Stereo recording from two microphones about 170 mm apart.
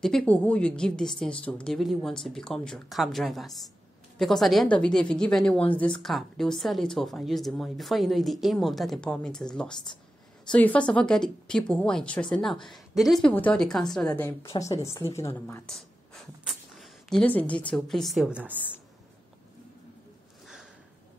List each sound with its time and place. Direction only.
0.0 s a woman's voice: 5° left (ahead or behind)
14.1 s speech: 15° left (ahead or behind)
16.4 s a sound: centre (ahead or behind)
17.7 s a woman's voice: 5° left (ahead or behind)